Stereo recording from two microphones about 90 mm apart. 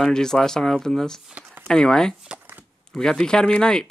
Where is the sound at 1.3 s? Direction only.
15° right (ahead or behind).